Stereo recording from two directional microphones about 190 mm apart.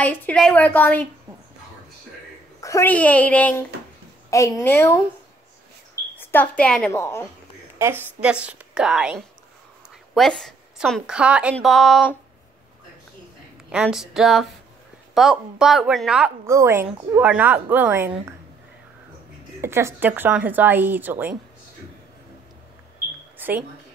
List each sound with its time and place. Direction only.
0.0 s a woman's voice: 5° left (ahead or behind)
2.6 s a woman's voice: 15° left (ahead or behind)
6.1 s a woman's voice: 10° left (ahead or behind)
7.8 s a woman's voice: 10° right (ahead or behind)
13.7 s a woman's voice: 5° right (ahead or behind)
16.4 s a woman's voice: 15° right (ahead or behind)
19.6 s a woman's voice: 15° right (ahead or behind)
23.3 s a sound: 10° right (ahead or behind)